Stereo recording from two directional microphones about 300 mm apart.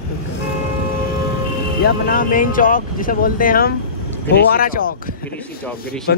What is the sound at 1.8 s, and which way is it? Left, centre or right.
Speech, left.